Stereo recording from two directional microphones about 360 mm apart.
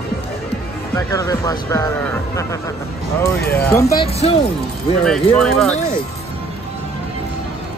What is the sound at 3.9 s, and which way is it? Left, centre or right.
Speech, left.